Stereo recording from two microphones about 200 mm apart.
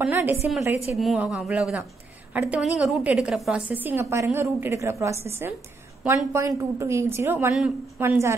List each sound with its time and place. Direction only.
0.0 s a woman's voice: 10° right (ahead or behind)